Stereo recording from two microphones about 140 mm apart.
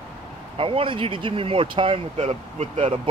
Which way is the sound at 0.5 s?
40° right (ahead or behind).